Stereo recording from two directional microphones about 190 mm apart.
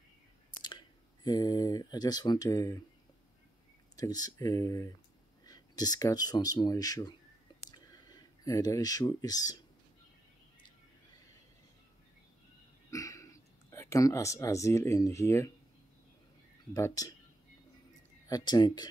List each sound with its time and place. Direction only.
0.6 s speech: 20° left (ahead or behind)
3.9 s speech: 20° left (ahead or behind)
7.7 s a sound: 20° left (ahead or behind)
12.9 s speech: 15° left (ahead or behind)
16.7 s speech: 20° left (ahead or behind)
18.3 s speech: 20° left (ahead or behind)